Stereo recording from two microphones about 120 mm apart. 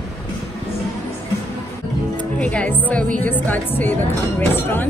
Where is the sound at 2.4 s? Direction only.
10° left (ahead or behind).